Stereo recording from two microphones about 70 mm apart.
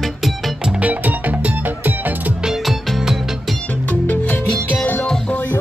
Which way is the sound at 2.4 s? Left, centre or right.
Centre.